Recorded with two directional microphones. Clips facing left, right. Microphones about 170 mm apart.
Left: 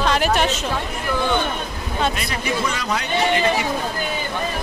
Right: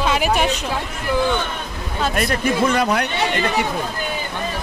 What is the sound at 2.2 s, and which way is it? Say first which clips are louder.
Speech: right 6 dB; 50° right (ahead or behind).